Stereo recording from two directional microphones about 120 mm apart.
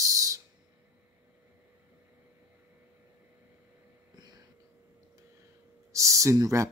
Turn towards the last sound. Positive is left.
turn(degrees=-25)  # may be behind; listen again after turning